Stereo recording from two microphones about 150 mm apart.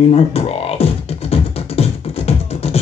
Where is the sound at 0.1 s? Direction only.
40° left (ahead or behind).